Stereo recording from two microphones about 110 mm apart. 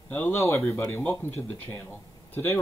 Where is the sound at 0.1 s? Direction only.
20° left (ahead or behind).